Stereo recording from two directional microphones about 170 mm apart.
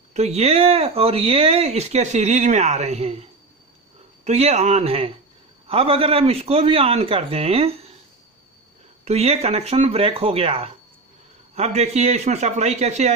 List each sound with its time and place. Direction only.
0.1 s speech: 40° right (ahead or behind)
9.0 s speech: 35° right (ahead or behind)